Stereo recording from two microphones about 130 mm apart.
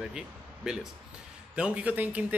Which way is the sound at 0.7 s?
5° right (ahead or behind).